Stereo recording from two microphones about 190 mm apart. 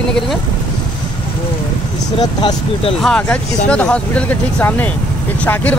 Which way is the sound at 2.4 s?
25° left (ahead or behind).